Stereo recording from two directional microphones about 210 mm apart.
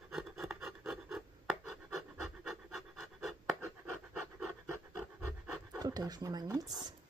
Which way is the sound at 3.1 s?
Centre (ahead or behind).